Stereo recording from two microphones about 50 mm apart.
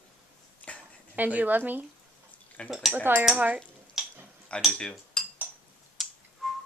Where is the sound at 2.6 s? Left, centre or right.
Left.